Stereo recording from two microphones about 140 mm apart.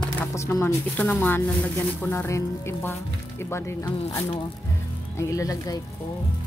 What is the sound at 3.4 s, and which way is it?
Music, 20° left (ahead or behind).